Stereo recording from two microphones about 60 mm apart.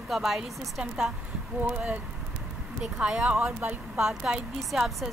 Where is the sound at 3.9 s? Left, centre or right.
Centre.